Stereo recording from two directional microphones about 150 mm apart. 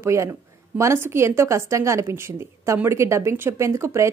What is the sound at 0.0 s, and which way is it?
A woman's voice, 20° right (ahead or behind).